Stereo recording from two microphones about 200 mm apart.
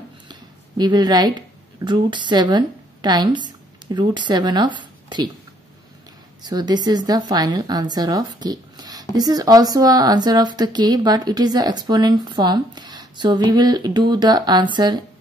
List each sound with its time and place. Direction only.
0.3 s a sound: 20° right (ahead or behind)
1.9 s speech: 25° right (ahead or behind)
6.4 s speech: 20° right (ahead or behind)